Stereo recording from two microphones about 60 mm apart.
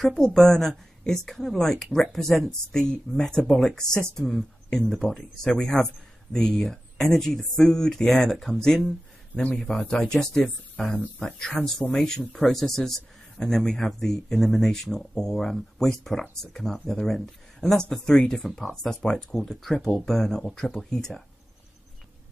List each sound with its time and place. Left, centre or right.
0.1 s speech: centre
9.3 s a man's voice: left
9.6 s a man's voice: centre